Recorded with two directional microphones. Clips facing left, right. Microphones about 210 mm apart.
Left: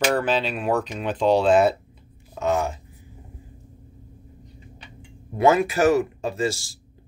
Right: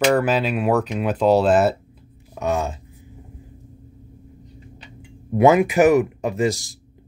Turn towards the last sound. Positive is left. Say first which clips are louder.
# right 4 dB
turn(degrees=-15)  # may be behind; listen again after turning